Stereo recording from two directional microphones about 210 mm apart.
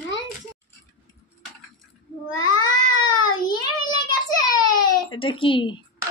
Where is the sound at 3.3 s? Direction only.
20° left (ahead or behind).